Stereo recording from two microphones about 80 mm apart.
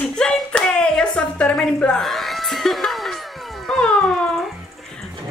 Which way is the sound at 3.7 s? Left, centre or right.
Centre.